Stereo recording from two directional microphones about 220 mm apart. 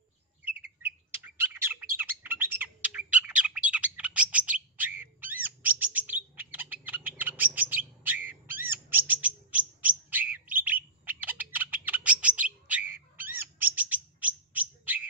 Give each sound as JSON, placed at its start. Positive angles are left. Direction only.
{"t": 0.5, "sound": "bird", "side_deg": -10}